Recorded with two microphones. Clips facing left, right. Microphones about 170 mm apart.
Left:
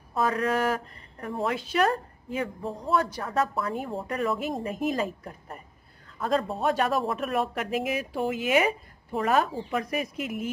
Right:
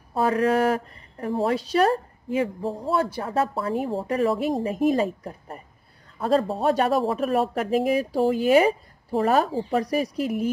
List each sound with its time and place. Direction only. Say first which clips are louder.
0.1 s speech: right 5 dB; 30° right (ahead or behind)